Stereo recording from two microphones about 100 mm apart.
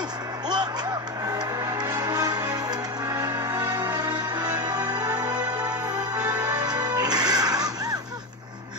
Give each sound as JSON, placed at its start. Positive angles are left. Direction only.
{"t": 1.2, "sound": "music", "side_deg": -35}
{"t": 6.3, "sound": "music", "side_deg": -15}
{"t": 6.6, "sound": "music", "side_deg": -40}